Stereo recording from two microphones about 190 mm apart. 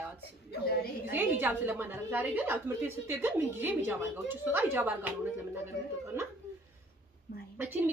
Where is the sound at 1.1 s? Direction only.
10° right (ahead or behind).